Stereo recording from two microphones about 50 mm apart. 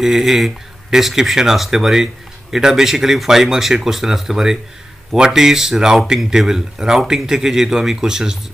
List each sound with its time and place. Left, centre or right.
0.0 s speech: centre